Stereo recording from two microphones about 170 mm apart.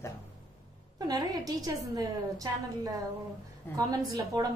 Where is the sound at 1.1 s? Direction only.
20° right (ahead or behind).